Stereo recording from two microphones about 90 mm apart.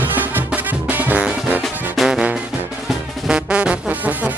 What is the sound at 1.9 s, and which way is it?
Music, 5° right (ahead or behind).